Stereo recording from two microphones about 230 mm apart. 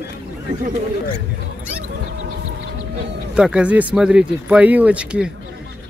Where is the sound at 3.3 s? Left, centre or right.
Centre.